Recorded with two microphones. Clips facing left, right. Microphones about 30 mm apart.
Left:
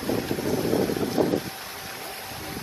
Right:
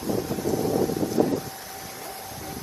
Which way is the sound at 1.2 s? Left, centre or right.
Left.